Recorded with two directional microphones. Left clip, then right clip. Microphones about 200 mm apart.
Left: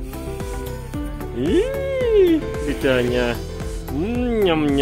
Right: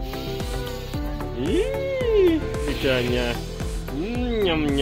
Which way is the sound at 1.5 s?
50° left (ahead or behind).